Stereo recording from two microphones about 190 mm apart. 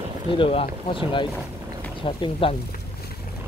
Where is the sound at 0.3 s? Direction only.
30° left (ahead or behind).